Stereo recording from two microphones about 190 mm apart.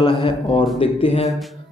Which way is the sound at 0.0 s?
25° left (ahead or behind).